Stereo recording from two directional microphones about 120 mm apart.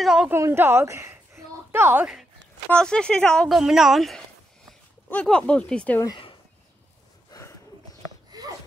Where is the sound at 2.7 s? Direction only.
5° left (ahead or behind).